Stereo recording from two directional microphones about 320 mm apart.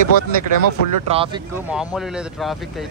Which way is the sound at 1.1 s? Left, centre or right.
Centre.